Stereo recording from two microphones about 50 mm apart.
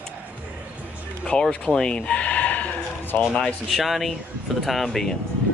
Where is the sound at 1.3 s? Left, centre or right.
Left.